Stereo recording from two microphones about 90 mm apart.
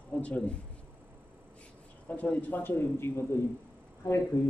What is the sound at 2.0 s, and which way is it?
Speech, 15° left (ahead or behind).